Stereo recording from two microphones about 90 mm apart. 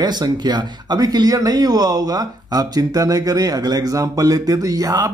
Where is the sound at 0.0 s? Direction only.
50° right (ahead or behind).